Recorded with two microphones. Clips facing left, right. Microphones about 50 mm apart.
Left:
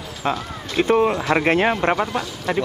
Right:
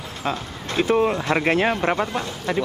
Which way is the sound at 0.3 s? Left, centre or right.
Left.